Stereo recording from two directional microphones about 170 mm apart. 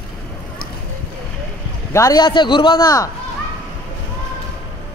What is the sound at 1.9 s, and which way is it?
A man's voice, 20° left (ahead or behind).